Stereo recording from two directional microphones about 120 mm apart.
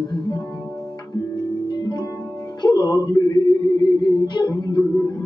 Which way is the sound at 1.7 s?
35° left (ahead or behind).